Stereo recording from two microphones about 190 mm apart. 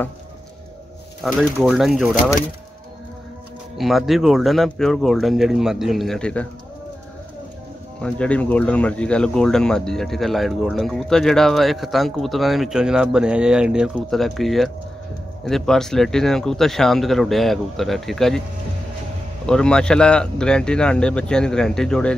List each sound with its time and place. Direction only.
1.2 s speech: centre (ahead or behind)
3.7 s speech: centre (ahead or behind)
8.0 s speech: 5° left (ahead or behind)
19.4 s speech: 5° left (ahead or behind)